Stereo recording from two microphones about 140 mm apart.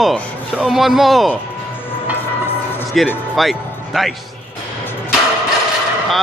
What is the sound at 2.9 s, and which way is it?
Speech, centre (ahead or behind).